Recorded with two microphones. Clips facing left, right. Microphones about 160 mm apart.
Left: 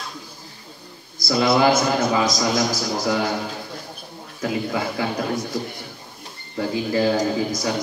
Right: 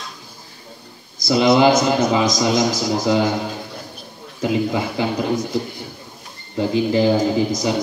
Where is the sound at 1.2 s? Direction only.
20° right (ahead or behind).